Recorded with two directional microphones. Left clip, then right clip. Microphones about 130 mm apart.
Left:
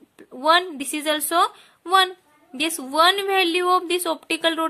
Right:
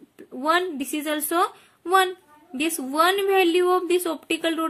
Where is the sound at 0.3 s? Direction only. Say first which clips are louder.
Left 4 dB; 35° left (ahead or behind).